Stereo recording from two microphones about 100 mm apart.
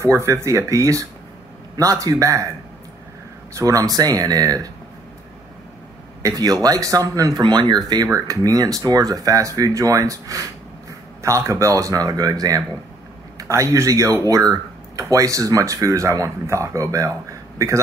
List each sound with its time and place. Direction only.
0.0 s speech: 30° right (ahead or behind)
3.5 s speech: 35° right (ahead or behind)
6.2 s speech: 40° right (ahead or behind)